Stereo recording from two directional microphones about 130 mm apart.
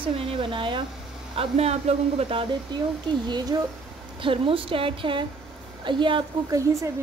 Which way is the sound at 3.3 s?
30° right (ahead or behind).